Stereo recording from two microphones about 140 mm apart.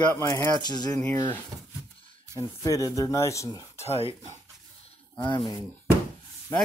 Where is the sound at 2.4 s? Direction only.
25° left (ahead or behind).